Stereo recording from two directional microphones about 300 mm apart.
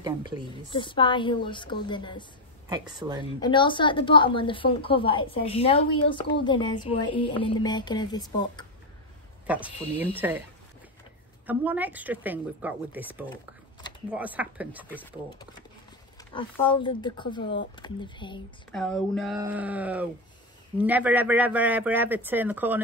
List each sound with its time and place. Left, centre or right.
0.0 s a woman's voice: centre
0.5 s a woman's voice: centre
2.7 s a man's voice: centre
3.2 s a woman's voice: centre
9.5 s a man's voice: centre
11.4 s a man's voice: centre
16.3 s a woman's voice: centre
17.4 s speech: left
17.7 s a woman's voice: centre
18.7 s a man's voice: centre